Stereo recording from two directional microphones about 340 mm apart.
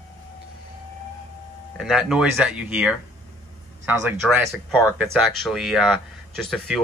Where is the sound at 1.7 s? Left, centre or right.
Centre.